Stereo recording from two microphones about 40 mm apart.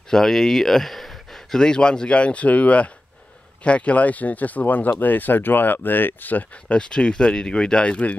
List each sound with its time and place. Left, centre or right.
0.1 s speech: centre
1.6 s speech: left
6.7 s speech: left